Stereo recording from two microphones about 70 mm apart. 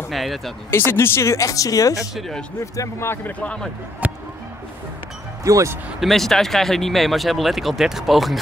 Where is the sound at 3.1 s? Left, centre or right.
Left.